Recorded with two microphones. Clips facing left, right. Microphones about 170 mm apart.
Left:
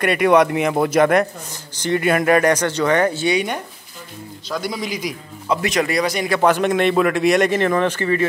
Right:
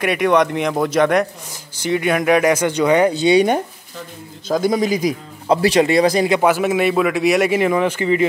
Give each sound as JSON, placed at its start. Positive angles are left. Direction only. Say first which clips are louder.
{"t": 0.0, "sound": "a man's voice", "louder": "left 1 dB", "side_deg": 0}
{"t": 4.5, "sound": "speech", "louder": "right 8 dB", "side_deg": -45}
{"t": 5.5, "sound": "speech", "louder": "right 6 dB", "side_deg": -30}
{"t": 6.4, "sound": "a man's voice", "louder": "even", "side_deg": -5}